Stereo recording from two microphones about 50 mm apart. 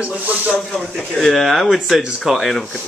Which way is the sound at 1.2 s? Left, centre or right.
Centre.